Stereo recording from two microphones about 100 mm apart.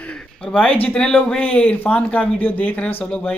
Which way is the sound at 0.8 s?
10° left (ahead or behind).